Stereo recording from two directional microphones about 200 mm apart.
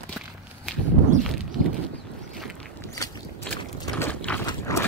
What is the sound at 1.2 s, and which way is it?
Walk, centre (ahead or behind).